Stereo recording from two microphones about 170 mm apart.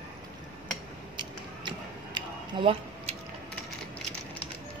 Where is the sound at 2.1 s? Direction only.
30° right (ahead or behind).